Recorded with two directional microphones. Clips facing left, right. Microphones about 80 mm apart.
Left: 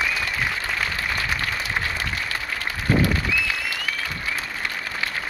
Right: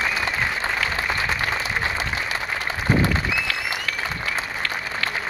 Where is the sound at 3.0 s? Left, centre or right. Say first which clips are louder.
Even; right.